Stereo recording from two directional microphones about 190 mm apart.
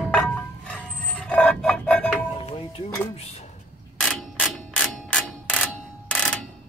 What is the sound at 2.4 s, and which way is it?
Music, 30° left (ahead or behind).